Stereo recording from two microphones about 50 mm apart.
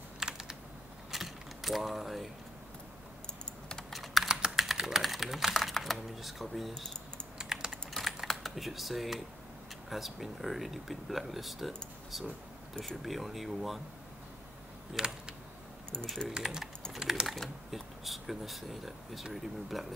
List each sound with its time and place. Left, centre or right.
0.2 s typing: centre
1.1 s mechanisms: centre
3.9 s typing: centre
5.6 s speech: centre
7.3 s typing: centre
7.7 s typing: centre
8.3 s speech: centre
15.0 s a sound: centre
16.4 s a sound: centre
16.9 s speech: centre